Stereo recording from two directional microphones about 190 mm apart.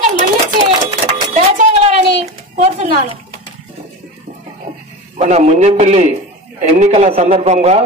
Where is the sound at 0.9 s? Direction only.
35° right (ahead or behind).